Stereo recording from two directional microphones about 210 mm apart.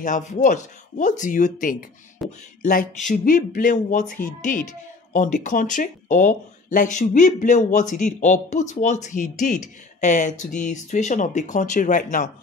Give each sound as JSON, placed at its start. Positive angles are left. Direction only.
{"t": 0.0, "sound": "speech", "side_deg": 35}
{"t": 2.2, "sound": "speech", "side_deg": 0}
{"t": 2.6, "sound": "speech", "side_deg": 40}